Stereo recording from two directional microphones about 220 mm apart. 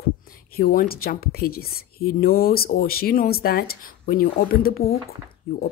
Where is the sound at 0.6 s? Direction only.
40° left (ahead or behind).